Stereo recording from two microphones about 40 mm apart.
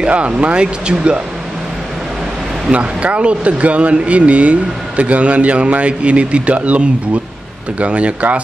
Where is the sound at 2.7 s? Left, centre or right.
Right.